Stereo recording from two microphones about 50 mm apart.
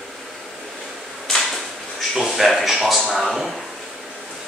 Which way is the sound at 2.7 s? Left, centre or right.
Centre.